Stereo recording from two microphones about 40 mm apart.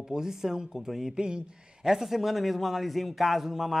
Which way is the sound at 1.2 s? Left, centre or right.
Right.